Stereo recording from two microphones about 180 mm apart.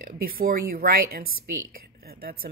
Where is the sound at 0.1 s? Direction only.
55° right (ahead or behind).